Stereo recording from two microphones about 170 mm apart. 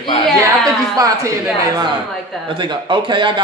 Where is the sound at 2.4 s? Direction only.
30° right (ahead or behind).